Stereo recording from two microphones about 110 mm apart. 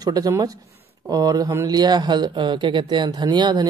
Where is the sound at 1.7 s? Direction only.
40° right (ahead or behind).